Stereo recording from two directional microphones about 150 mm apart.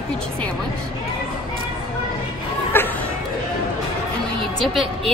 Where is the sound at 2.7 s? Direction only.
15° left (ahead or behind).